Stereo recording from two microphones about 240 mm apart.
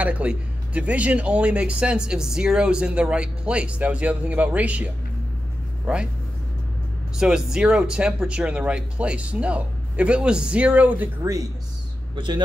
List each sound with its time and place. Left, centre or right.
0.0 s speech: centre
5.9 s speech: centre
7.2 s a man's voice: centre